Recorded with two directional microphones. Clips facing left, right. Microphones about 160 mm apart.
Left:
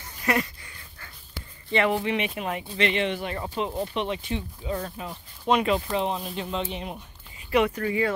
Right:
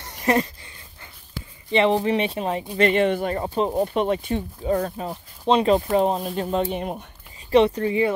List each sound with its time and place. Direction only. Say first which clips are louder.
0.2 s speech: right 5 dB; 30° right (ahead or behind)
1.7 s speech: right 5 dB; 20° right (ahead or behind)
2.0 s speech: right 5 dB; 35° right (ahead or behind)
2.8 s speech: right 7 dB; 45° right (ahead or behind)
5.9 s speech: right 7 dB; 45° right (ahead or behind)
7.5 s speech: right 6 dB; 30° right (ahead or behind)